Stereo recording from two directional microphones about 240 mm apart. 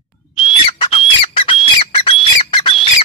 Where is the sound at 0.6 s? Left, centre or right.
Left.